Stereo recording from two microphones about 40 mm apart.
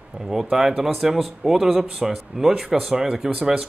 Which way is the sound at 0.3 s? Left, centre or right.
Centre.